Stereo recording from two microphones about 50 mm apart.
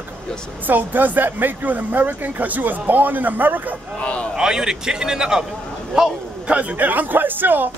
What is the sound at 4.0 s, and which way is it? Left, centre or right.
Speech, left.